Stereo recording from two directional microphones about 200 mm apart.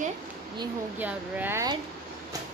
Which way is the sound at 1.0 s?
10° right (ahead or behind).